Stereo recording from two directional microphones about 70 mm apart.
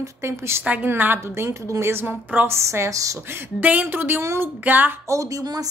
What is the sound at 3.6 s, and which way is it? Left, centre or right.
Speech, right.